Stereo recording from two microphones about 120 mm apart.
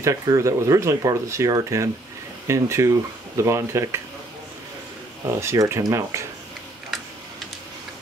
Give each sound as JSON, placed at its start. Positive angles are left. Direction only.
{"t": 0.0, "sound": "speech", "side_deg": -25}
{"t": 5.4, "sound": "speech", "side_deg": -25}